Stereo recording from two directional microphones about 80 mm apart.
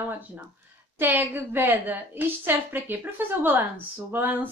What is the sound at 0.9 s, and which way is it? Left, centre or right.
A woman's voice, right.